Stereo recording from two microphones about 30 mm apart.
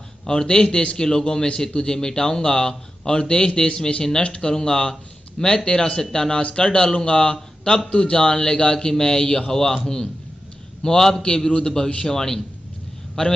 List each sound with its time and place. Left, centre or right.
0.4 s a man's voice: left
11.2 s speech: left
13.2 s speech: left